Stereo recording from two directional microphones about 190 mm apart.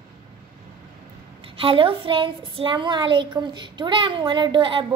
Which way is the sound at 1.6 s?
30° right (ahead or behind).